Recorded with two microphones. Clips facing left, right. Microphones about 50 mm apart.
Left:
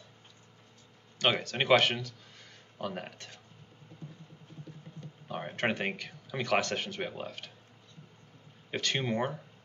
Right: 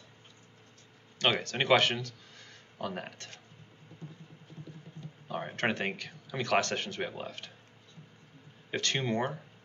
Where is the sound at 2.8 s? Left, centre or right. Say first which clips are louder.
Even; centre.